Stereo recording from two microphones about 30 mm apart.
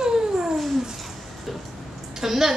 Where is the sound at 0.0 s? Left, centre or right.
Right.